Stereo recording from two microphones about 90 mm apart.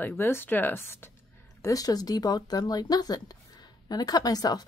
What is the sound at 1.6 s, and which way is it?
A woman's voice, 40° left (ahead or behind).